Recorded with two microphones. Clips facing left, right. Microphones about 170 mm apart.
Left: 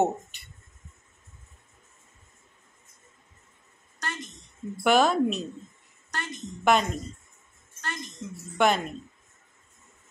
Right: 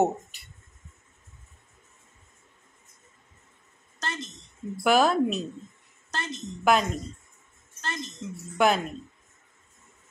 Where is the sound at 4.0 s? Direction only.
25° right (ahead or behind).